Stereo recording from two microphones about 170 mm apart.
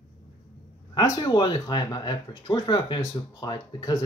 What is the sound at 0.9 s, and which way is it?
Speech, 20° left (ahead or behind).